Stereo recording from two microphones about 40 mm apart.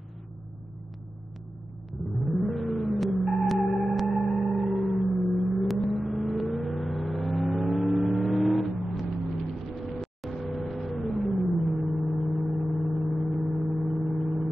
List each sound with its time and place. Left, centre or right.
2.2 s car: centre
5.2 s vehicle: centre